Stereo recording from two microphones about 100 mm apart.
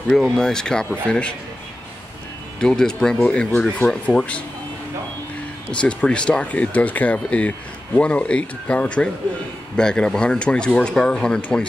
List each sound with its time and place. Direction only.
0.1 s speech: 5° left (ahead or behind)
2.6 s speech: 5° left (ahead or behind)
5.8 s speech: 10° left (ahead or behind)